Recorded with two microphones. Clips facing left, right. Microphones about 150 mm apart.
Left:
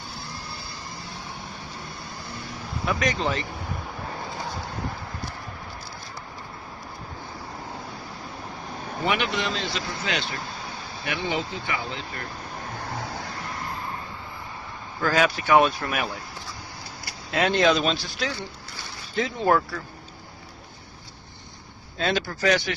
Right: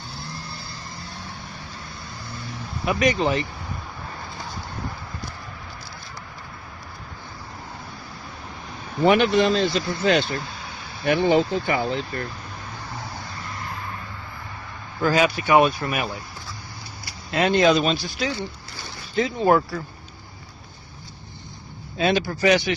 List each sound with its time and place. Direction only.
2.8 s speech: 10° right (ahead or behind)
9.0 s speech: 40° right (ahead or behind)
15.0 s speech: 10° right (ahead or behind)
17.3 s speech: centre (ahead or behind)
21.9 s speech: 15° right (ahead or behind)